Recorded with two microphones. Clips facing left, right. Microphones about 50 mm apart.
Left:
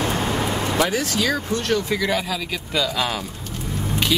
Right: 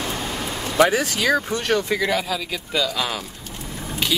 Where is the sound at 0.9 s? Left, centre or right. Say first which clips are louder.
Right 2 dB; centre.